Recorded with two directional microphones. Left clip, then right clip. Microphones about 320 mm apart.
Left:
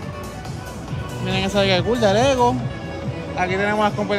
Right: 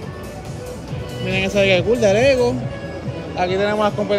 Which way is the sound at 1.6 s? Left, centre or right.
Centre.